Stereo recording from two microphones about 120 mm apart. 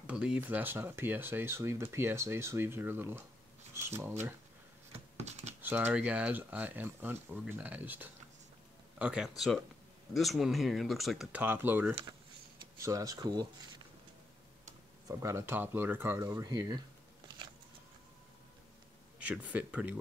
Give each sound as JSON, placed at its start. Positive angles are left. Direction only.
{"t": 0.0, "sound": "speech", "side_deg": -10}
{"t": 5.2, "sound": "typing", "side_deg": -70}
{"t": 5.6, "sound": "speech", "side_deg": -15}
{"t": 11.3, "sound": "speech", "side_deg": -15}
{"t": 12.8, "sound": "speech", "side_deg": -30}
{"t": 14.6, "sound": "speech", "side_deg": -25}
{"t": 16.2, "sound": "speech", "side_deg": -35}
{"t": 19.2, "sound": "speech", "side_deg": -10}